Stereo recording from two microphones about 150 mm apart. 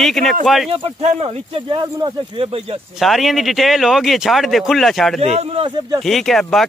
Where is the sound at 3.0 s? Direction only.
Centre (ahead or behind).